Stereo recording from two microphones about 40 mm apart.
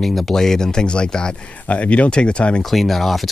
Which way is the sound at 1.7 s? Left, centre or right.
Left.